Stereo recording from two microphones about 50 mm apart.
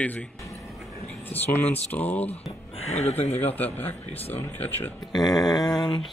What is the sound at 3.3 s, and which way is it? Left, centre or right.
Speech, left.